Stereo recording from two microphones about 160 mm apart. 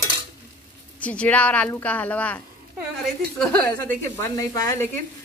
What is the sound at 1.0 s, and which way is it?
A woman's voice, 10° left (ahead or behind).